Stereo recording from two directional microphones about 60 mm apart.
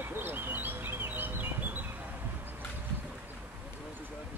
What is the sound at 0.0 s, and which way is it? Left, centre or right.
Bird, right.